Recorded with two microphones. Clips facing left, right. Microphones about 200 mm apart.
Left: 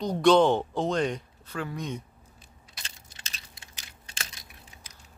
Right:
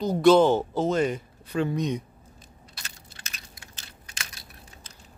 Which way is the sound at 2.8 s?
25° left (ahead or behind).